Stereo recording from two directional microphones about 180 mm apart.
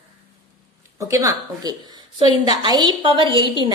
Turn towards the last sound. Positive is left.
turn(degrees=-25)  # may be behind; listen again after turning